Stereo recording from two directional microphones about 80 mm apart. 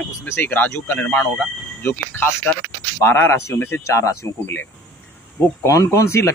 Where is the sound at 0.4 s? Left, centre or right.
Left.